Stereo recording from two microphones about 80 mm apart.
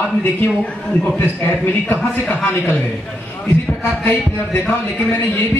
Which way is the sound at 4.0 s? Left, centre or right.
Left.